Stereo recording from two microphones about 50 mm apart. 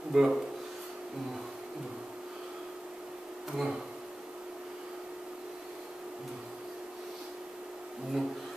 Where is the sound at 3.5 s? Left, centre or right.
Centre.